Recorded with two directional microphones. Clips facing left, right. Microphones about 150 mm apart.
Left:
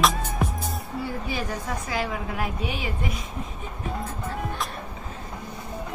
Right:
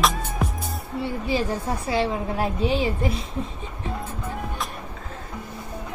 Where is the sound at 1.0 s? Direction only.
25° right (ahead or behind).